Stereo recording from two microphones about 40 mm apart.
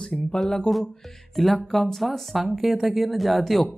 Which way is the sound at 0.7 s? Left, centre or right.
Left.